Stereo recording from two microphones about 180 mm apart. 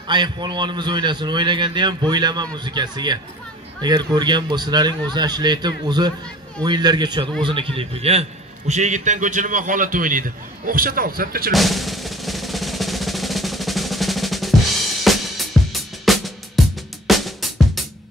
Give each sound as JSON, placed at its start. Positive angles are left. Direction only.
{"t": 0.1, "sound": "a man's voice", "side_deg": -25}
{"t": 11.5, "sound": "drum", "side_deg": 0}
{"t": 15.0, "sound": "music", "side_deg": 0}